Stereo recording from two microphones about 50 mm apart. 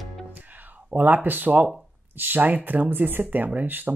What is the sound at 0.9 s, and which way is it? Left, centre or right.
Speech, right.